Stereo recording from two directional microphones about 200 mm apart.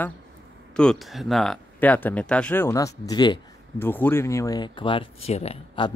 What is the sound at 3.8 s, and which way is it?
Speech, 10° left (ahead or behind).